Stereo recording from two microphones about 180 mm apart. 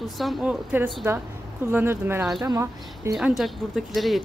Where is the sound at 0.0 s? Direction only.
Centre (ahead or behind); by 3.1 s 15° right (ahead or behind).